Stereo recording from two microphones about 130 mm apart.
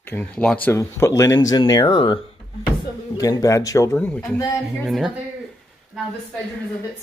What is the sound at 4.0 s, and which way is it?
Speech, 10° left (ahead or behind).